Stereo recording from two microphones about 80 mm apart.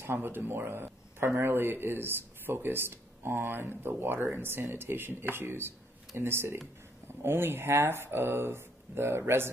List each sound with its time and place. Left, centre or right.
0.0 s a man's voice: right